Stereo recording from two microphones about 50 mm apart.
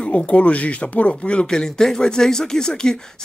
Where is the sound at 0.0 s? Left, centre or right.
Left.